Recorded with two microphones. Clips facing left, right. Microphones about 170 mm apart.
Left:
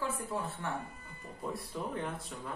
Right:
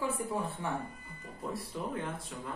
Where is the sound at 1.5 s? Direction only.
Centre (ahead or behind).